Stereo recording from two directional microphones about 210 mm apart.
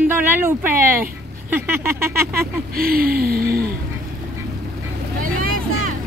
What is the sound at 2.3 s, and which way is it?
Speech, 45° right (ahead or behind).